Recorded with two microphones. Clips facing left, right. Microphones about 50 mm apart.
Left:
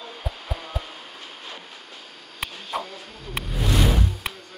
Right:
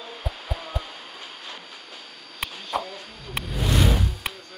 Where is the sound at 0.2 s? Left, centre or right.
Centre.